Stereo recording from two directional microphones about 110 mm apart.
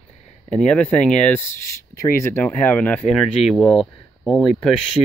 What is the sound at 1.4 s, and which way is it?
Speech, 25° left (ahead or behind).